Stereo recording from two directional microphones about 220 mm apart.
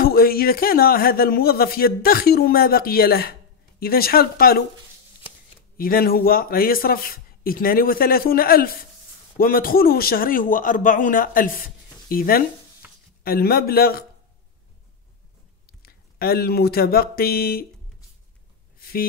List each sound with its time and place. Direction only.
0.0 s speech: 40° left (ahead or behind)
5.8 s a man's voice: 40° left (ahead or behind)
12.8 s a sound: 5° right (ahead or behind)
13.2 s speech: 45° left (ahead or behind)
15.8 s speech: 45° left (ahead or behind)
18.8 s a sound: 45° left (ahead or behind)